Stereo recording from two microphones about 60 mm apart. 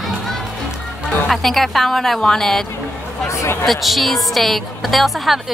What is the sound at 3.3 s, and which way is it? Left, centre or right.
Speech, left.